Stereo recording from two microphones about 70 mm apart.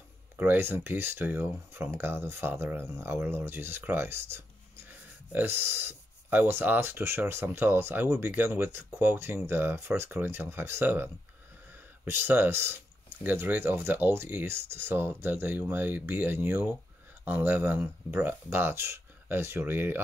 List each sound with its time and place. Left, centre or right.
0.4 s speech: right